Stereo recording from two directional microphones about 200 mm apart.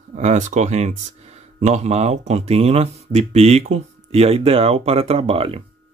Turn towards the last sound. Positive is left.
turn(degrees=-30)  # may be behind; listen again after turning